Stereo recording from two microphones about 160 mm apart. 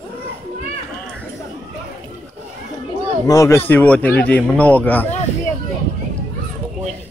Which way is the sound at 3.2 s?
20° left (ahead or behind).